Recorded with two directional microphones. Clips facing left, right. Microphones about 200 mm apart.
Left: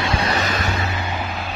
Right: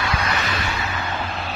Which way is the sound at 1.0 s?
10° left (ahead or behind).